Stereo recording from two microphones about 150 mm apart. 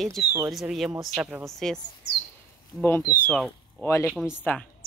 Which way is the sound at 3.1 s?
10° left (ahead or behind).